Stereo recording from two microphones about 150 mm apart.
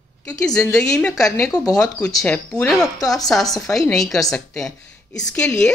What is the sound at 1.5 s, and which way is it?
Speech, 25° left (ahead or behind).